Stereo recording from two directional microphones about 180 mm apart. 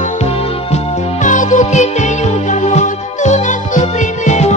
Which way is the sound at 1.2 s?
45° left (ahead or behind).